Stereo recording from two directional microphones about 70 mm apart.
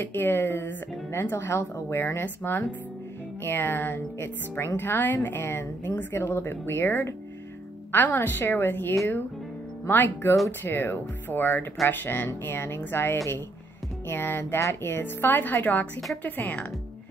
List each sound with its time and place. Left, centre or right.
0.0 s speech: left